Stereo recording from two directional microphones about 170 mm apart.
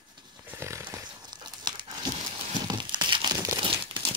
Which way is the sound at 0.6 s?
15° right (ahead or behind).